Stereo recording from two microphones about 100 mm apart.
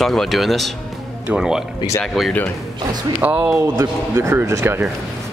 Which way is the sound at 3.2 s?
15° right (ahead or behind).